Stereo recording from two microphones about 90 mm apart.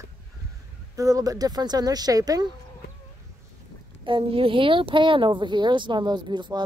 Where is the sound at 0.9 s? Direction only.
40° right (ahead or behind).